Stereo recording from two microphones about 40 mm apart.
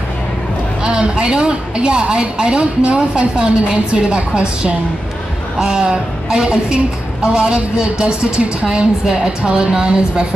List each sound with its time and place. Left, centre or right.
0.8 s a woman's voice: right